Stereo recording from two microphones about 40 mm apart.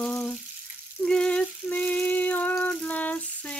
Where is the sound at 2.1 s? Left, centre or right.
Left.